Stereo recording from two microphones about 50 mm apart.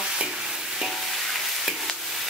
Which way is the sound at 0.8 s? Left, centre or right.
Centre.